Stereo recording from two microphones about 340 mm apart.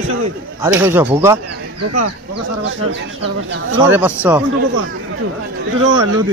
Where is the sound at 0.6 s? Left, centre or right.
Centre.